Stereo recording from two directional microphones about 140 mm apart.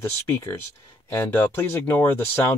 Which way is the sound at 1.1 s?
15° left (ahead or behind).